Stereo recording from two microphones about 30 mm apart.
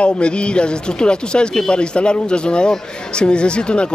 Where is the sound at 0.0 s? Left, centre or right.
Left.